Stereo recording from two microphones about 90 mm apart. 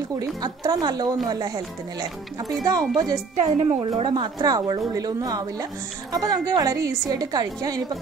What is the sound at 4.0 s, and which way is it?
A woman's voice, 55° right (ahead or behind).